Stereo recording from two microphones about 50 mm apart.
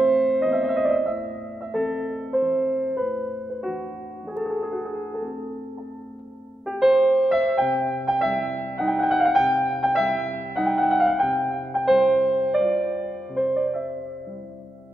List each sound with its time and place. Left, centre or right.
0.0 s music: centre
4.4 s music: centre
6.7 s music: centre
7.7 s music: left
8.0 s music: centre
8.3 s music: centre
8.7 s music: centre
11.3 s music: centre
11.7 s music: centre
12.9 s music: centre
13.6 s music: centre